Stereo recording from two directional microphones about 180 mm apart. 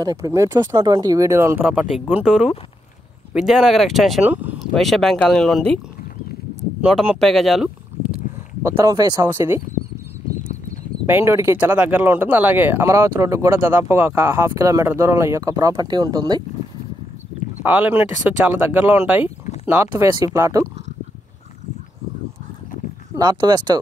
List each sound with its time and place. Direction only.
0.0 s speech: 20° right (ahead or behind); by 5.8 s 5° left (ahead or behind)
6.8 s speech: centre (ahead or behind)
8.6 s speech: 20° right (ahead or behind)
11.1 s speech: 15° right (ahead or behind)
17.6 s speech: 10° right (ahead or behind)
23.1 s speech: 25° right (ahead or behind)